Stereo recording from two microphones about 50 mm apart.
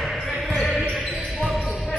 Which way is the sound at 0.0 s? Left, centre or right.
Centre.